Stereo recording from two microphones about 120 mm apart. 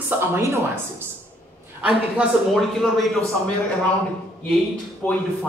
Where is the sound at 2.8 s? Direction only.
5° left (ahead or behind).